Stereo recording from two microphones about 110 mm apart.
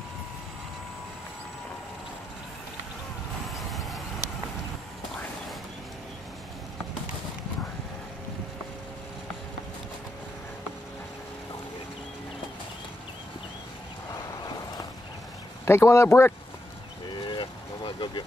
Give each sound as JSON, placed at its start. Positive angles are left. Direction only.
{"t": 3.5, "sound": "vehicle", "side_deg": 0}
{"t": 15.6, "sound": "speech", "side_deg": 25}
{"t": 17.3, "sound": "vehicle", "side_deg": 50}